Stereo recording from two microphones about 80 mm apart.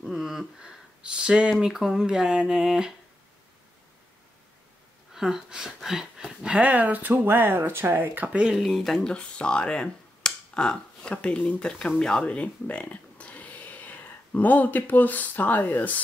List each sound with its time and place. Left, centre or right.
0.0 s speech: centre
5.1 s speech: centre; by 8.3 s right
8.3 s speech: centre; by 16.0 s left